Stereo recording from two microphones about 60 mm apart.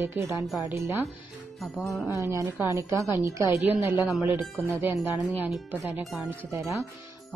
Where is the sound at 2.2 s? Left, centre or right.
Right.